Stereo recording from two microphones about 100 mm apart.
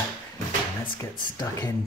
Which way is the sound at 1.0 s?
35° left (ahead or behind).